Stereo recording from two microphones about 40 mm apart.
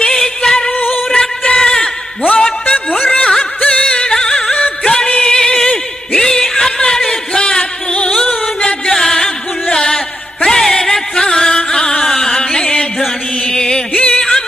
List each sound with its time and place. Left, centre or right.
0.0 s music: centre
0.7 s music: left
1.6 s a sound: centre
2.2 s a sound: left
2.7 s music: left
3.6 s music: left
3.9 s music: left
5.6 s a sound: centre
7.3 s music: left
8.9 s music: centre